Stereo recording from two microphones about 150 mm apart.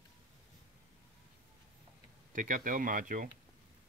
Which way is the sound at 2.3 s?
60° right (ahead or behind).